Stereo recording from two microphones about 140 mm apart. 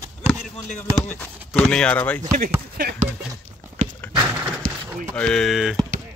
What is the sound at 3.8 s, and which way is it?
Horse, 70° right (ahead or behind).